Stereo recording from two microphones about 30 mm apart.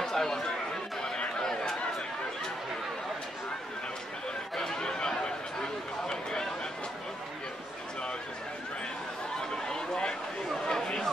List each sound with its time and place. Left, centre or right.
0.0 s chatter: centre
4.6 s chatter: left
9.4 s chatter: left
10.7 s a sound: left